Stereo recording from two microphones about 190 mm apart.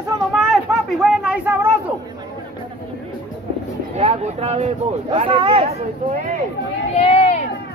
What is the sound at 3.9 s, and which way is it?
Speech, 35° right (ahead or behind).